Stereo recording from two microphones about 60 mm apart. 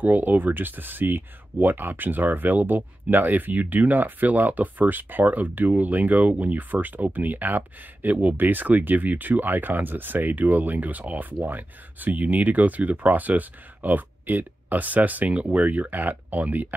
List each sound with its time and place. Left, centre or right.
0.0 s speech: right